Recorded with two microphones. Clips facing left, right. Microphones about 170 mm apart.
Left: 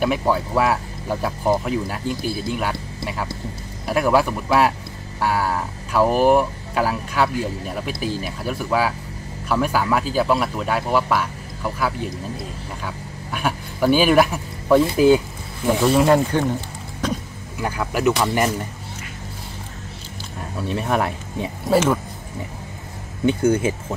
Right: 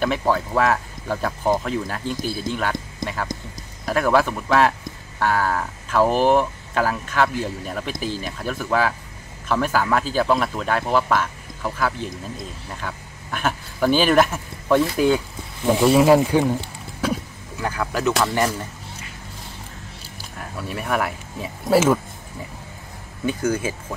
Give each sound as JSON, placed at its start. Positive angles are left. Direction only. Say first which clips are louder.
{"t": 0.0, "sound": "speech", "louder": "left 1 dB", "side_deg": 10}
{"t": 15.0, "sound": "a sound", "louder": "left 4 dB", "side_deg": 5}
{"t": 15.7, "sound": "speech", "louder": "right 2 dB", "side_deg": -5}
{"t": 17.0, "sound": "a sound", "louder": "right 1 dB", "side_deg": -10}
{"t": 17.6, "sound": "speech", "louder": "left 1 dB", "side_deg": 15}
{"t": 20.5, "sound": "speech", "louder": "left 3 dB", "side_deg": 25}
{"t": 21.6, "sound": "speech", "louder": "right 1 dB", "side_deg": -5}
{"t": 23.2, "sound": "speech", "louder": "left 5 dB", "side_deg": 30}